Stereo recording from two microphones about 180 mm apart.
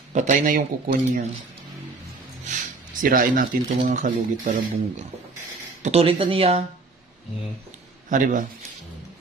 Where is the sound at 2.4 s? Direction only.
45° right (ahead or behind).